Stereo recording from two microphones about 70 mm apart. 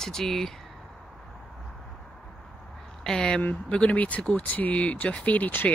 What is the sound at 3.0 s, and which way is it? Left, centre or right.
Speech, centre.